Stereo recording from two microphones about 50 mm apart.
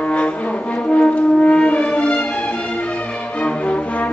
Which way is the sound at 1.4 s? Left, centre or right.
Left.